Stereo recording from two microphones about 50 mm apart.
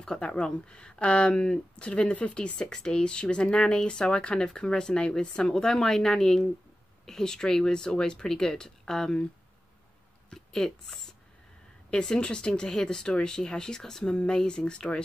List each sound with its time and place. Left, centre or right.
0.2 s speech: centre
10.3 s speech: centre